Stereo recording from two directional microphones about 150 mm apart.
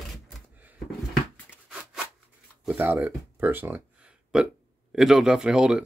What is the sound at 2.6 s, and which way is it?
Speech, 10° right (ahead or behind).